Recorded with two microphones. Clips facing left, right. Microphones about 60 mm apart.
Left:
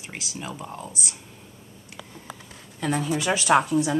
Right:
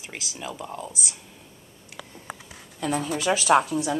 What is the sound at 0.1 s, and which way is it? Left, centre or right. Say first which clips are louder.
Speech: even; left.